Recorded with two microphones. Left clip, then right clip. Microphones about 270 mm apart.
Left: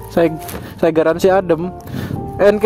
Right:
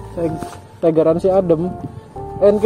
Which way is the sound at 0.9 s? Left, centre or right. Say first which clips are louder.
Left 1 dB; left.